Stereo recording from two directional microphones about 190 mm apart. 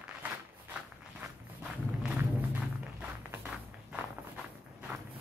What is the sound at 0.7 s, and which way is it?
Walk, 10° right (ahead or behind).